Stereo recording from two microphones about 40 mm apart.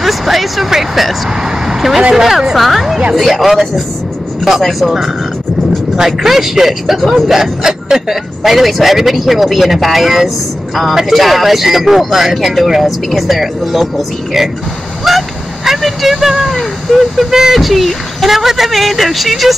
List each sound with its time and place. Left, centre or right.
0.0 s a man's voice: centre
5.9 s a man's voice: centre
15.0 s a sound: centre
17.3 s speech: centre
17.6 s a man's voice: centre